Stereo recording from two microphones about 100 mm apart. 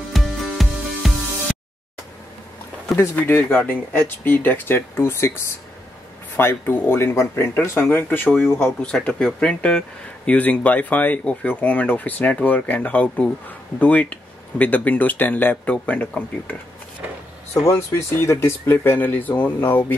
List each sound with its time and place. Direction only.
0.1 s music: centre (ahead or behind)
3.2 s speech: 20° left (ahead or behind)
8.5 s speech: 10° left (ahead or behind)
17.6 s speech: 25° left (ahead or behind)